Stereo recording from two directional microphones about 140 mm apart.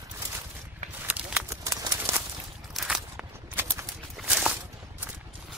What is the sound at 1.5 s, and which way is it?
Bird, 20° right (ahead or behind).